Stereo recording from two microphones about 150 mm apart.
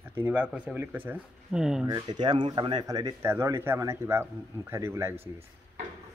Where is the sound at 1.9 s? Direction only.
30° right (ahead or behind).